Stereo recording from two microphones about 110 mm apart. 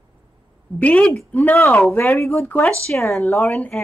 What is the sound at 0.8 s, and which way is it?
A woman's voice, 10° left (ahead or behind).